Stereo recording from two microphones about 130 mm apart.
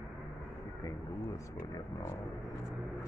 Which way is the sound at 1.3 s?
25° left (ahead or behind).